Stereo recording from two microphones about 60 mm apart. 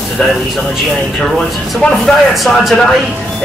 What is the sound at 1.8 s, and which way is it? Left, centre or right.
Speech, left.